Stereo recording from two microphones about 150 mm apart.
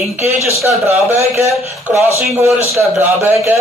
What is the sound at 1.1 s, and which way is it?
A man's voice, 20° right (ahead or behind).